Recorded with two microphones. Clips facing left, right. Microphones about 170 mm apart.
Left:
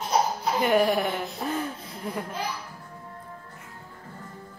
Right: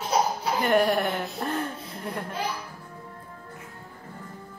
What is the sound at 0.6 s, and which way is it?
Speech, centre (ahead or behind).